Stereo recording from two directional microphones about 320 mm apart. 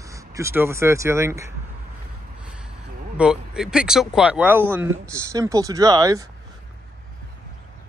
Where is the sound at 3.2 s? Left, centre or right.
Centre.